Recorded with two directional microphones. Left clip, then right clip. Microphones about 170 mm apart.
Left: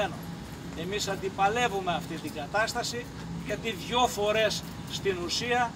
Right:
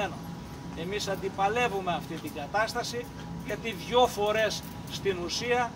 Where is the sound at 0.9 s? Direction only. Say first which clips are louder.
Even; 10° left (ahead or behind).